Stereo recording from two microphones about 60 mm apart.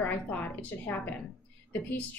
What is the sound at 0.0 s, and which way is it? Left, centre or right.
A woman's voice, left.